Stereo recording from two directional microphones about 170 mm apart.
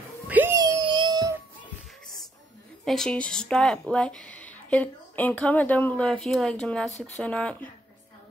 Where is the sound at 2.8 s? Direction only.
5° left (ahead or behind).